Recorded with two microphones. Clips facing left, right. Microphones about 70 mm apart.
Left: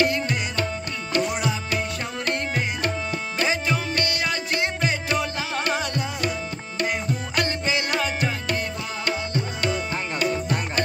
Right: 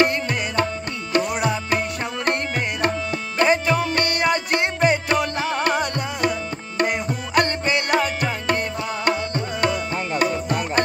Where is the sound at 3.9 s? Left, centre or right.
Right.